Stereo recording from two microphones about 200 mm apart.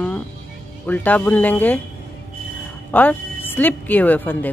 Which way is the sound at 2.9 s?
10° left (ahead or behind).